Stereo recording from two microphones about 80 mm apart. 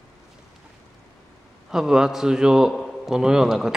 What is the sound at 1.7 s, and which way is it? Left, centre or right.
A man's voice, centre.